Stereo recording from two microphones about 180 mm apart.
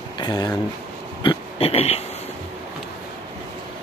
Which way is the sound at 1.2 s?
30° left (ahead or behind).